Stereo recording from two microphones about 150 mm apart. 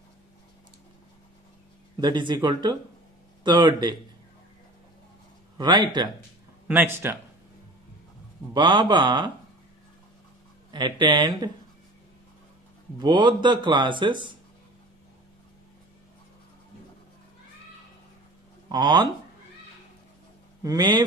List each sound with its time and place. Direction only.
2.0 s speech: 30° right (ahead or behind)
5.6 s speech: 30° right (ahead or behind)
6.7 s speech: 15° right (ahead or behind)
8.5 s speech: 30° right (ahead or behind)
10.7 s speech: 30° right (ahead or behind)
13.0 s speech: 30° right (ahead or behind)
18.7 s speech: 30° right (ahead or behind)
20.6 s speech: 30° right (ahead or behind)